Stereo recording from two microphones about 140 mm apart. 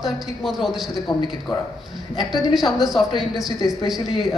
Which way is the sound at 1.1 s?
30° left (ahead or behind).